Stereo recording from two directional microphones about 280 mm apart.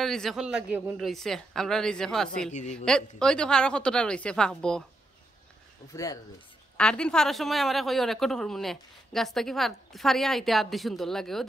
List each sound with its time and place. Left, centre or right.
0.0 s a man's voice: centre
2.5 s a woman's voice: left
2.8 s a man's voice: centre
6.8 s a man's voice: centre